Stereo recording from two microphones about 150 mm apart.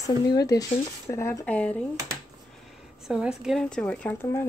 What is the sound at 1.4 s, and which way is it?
Speech, 10° left (ahead or behind).